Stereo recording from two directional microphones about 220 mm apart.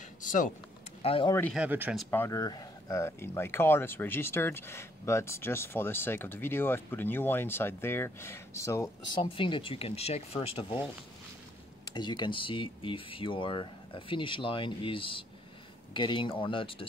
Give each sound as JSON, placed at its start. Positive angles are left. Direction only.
{"t": 0.2, "sound": "a sound", "side_deg": 35}
{"t": 1.0, "sound": "speech", "side_deg": 25}
{"t": 1.3, "sound": "speech", "side_deg": 5}
{"t": 1.6, "sound": "speech", "side_deg": -5}
{"t": 2.0, "sound": "speech", "side_deg": 10}
{"t": 11.8, "sound": "speech", "side_deg": 20}